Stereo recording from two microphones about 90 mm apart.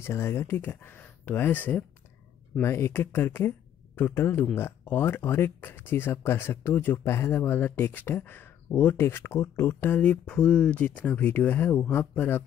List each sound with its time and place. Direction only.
0.0 s speech: 25° left (ahead or behind)
10.2 s speech: 10° left (ahead or behind)